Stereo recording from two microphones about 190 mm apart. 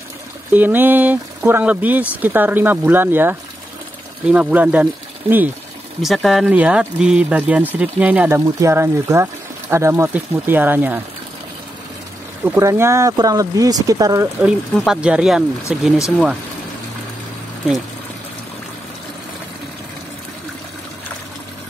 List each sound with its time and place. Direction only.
0.5 s speech: 10° right (ahead or behind)
5.9 s speech: centre (ahead or behind)
12.4 s speech: 15° right (ahead or behind)
14.4 s speech: 5° right (ahead or behind)